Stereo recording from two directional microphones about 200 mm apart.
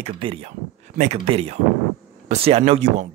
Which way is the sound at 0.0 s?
30° right (ahead or behind).